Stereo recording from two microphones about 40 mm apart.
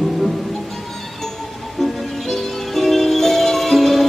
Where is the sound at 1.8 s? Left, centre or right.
Centre.